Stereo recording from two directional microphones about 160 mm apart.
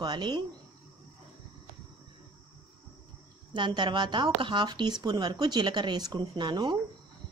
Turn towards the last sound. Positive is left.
turn(degrees=-30)  # may be behind; listen again after turning